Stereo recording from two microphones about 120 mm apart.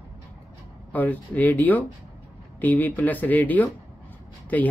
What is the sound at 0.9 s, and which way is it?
Speech, 15° left (ahead or behind).